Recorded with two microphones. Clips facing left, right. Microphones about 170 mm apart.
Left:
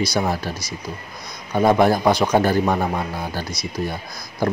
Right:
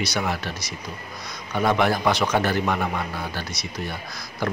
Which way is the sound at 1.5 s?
40° left (ahead or behind).